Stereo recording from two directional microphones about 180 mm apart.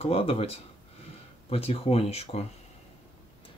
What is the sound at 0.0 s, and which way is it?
Speech, 30° left (ahead or behind).